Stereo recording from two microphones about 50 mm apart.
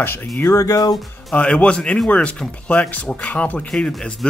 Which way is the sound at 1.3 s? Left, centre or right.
Left.